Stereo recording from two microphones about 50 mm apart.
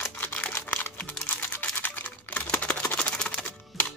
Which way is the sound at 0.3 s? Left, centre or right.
Left.